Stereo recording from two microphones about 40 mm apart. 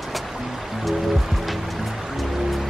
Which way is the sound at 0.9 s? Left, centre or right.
Centre.